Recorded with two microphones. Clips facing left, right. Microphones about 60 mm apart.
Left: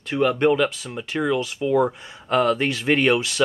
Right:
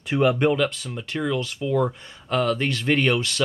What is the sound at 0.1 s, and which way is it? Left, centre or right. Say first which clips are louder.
Speech: left 1 dB; centre.